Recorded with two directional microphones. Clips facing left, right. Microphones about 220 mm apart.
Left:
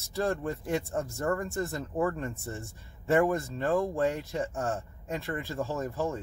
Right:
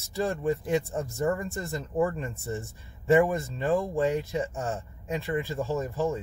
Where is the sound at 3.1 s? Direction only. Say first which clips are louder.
Right 3 dB; 15° right (ahead or behind).